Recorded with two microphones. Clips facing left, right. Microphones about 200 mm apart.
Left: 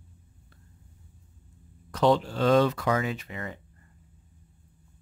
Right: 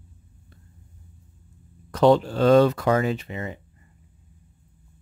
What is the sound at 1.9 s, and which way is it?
Speech, 50° right (ahead or behind).